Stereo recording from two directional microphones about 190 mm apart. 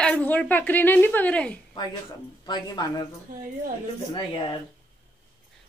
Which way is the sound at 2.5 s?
20° left (ahead or behind).